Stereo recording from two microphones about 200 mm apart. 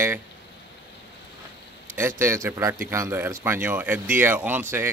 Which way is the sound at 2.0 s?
10° right (ahead or behind).